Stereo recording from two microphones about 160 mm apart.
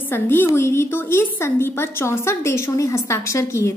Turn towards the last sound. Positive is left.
turn(degrees=20)  # may be behind; listen again after turning